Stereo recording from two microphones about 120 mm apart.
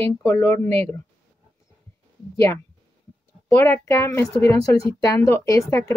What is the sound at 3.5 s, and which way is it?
Speech, 20° left (ahead or behind).